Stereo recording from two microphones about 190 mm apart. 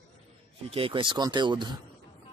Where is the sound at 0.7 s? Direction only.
30° right (ahead or behind).